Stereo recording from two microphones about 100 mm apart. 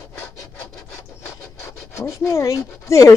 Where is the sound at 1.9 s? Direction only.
30° left (ahead or behind).